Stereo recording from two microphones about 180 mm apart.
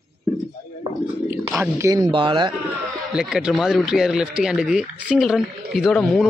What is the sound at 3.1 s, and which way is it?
Speech, 5° right (ahead or behind).